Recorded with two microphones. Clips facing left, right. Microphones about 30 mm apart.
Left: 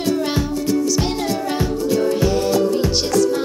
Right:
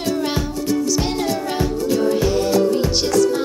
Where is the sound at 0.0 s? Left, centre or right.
Centre.